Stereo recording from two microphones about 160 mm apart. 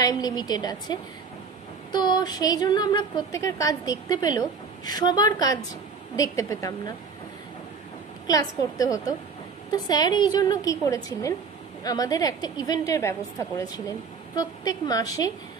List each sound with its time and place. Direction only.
0.0 s a woman's voice: 25° left (ahead or behind)
8.3 s a woman's voice: 20° left (ahead or behind)